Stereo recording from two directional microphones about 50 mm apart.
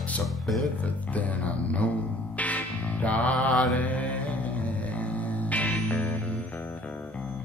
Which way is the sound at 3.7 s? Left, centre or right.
Left.